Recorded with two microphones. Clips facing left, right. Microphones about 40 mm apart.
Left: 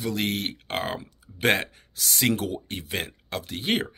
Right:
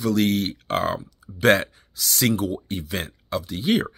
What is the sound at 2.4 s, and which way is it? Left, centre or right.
Speech, left.